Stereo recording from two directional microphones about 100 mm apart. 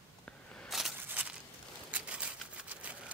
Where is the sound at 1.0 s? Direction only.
15° right (ahead or behind).